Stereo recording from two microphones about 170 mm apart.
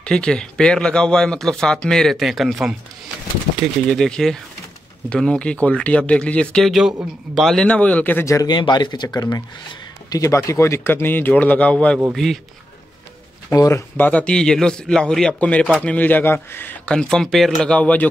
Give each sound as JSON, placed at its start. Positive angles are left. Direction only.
{"t": 0.0, "sound": "speech", "side_deg": 5}
{"t": 3.9, "sound": "a man's voice", "side_deg": 5}
{"t": 13.5, "sound": "a man's voice", "side_deg": 20}